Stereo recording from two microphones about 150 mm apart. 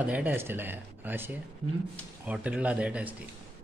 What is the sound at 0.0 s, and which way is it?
Speech, 10° right (ahead or behind).